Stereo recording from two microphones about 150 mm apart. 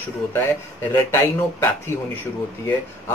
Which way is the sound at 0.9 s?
15° left (ahead or behind).